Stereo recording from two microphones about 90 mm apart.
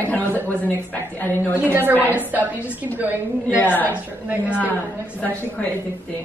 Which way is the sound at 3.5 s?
20° left (ahead or behind).